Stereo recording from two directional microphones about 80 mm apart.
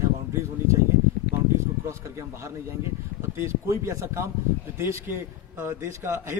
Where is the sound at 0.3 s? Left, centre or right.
Right.